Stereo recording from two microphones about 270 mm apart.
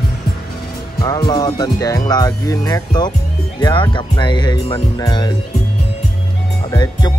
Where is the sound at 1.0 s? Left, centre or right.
Centre.